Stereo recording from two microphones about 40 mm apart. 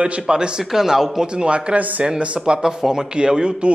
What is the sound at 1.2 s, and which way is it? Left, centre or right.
A man's voice, right.